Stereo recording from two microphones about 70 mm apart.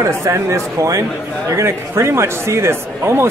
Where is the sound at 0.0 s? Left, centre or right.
Right.